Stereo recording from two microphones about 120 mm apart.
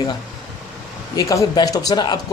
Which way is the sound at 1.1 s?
30° left (ahead or behind).